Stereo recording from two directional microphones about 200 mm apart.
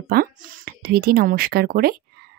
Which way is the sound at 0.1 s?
50° right (ahead or behind).